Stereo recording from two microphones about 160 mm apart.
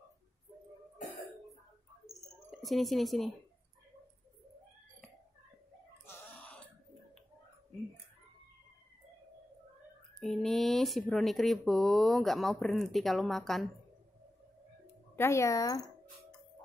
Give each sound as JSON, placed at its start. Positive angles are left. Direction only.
{"t": 2.6, "sound": "speech", "side_deg": 0}
{"t": 6.0, "sound": "a sound", "side_deg": 15}
{"t": 10.1, "sound": "speech", "side_deg": 0}
{"t": 15.1, "sound": "speech", "side_deg": 15}